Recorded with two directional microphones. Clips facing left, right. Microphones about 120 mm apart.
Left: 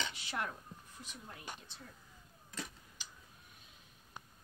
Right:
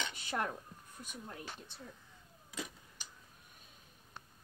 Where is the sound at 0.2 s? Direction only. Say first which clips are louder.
Right 7 dB; 45° right (ahead or behind).